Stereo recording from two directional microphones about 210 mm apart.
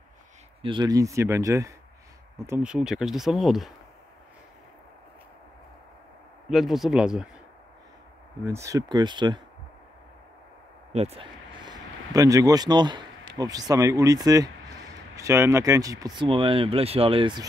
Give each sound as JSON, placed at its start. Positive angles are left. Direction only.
{"t": 0.6, "sound": "speech", "side_deg": -25}
{"t": 6.5, "sound": "speech", "side_deg": 0}
{"t": 8.5, "sound": "speech", "side_deg": -15}
{"t": 10.9, "sound": "speech", "side_deg": -30}